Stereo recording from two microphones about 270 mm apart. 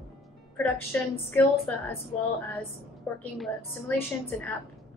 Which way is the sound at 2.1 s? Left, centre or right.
Left.